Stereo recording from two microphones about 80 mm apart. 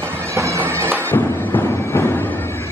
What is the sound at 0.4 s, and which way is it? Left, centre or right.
Bagpipes, right.